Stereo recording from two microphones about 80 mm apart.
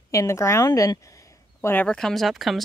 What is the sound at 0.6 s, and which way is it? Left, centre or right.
Speech, left.